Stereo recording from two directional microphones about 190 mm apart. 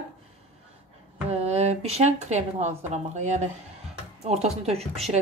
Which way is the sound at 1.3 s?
35° right (ahead or behind).